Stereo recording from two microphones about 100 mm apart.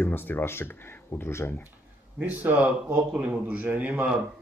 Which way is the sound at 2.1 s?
20° right (ahead or behind).